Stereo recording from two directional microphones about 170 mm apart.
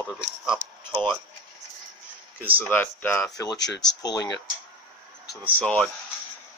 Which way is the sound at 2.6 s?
10° left (ahead or behind).